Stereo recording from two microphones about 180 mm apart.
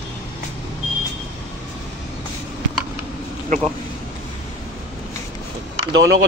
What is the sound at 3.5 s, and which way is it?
Speech, 40° right (ahead or behind).